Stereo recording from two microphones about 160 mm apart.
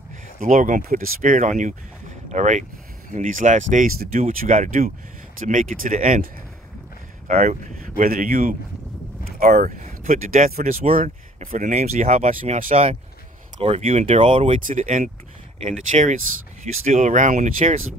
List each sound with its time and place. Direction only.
0.4 s speech: 55° right (ahead or behind)
7.2 s speech: 50° right (ahead or behind)
13.6 s speech: 40° right (ahead or behind)
13.8 s speech: 50° right (ahead or behind)
14.2 s speech: 35° right (ahead or behind)
14.7 s speech: 50° right (ahead or behind)
15.9 s speech: 40° right (ahead or behind)